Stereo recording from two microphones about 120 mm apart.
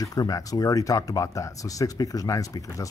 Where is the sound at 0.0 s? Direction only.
30° left (ahead or behind).